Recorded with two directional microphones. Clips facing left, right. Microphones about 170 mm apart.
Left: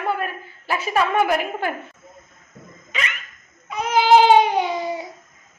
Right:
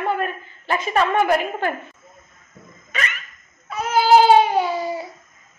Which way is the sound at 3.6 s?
15° left (ahead or behind).